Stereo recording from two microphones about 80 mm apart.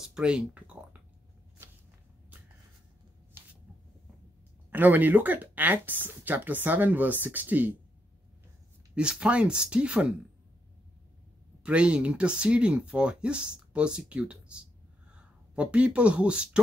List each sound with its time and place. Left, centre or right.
0.1 s speech: centre
4.6 s speech: right
8.9 s speech: centre
11.6 s speech: centre